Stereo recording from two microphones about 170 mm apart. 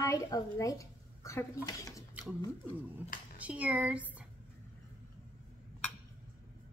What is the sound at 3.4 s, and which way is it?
Speech, 10° right (ahead or behind).